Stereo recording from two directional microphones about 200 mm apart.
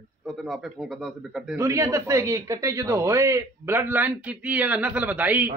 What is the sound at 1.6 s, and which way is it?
Speech, 15° right (ahead or behind).